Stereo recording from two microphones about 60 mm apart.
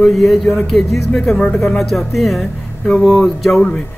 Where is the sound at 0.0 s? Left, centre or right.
Centre.